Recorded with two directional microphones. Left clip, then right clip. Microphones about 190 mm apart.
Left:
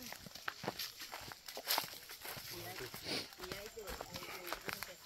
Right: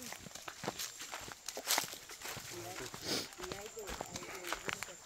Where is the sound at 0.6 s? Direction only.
20° right (ahead or behind).